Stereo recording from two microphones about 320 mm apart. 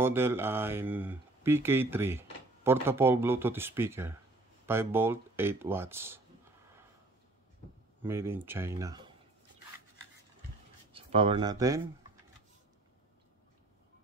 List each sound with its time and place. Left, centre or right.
0.0 s speech: centre
8.0 s speech: centre
10.9 s speech: centre